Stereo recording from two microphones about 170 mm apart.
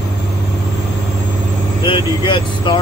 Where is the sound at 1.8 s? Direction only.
30° left (ahead or behind).